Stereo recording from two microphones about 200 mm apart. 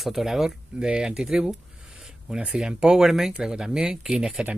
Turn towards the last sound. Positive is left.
turn(degrees=-5)  # may be behind; listen again after turning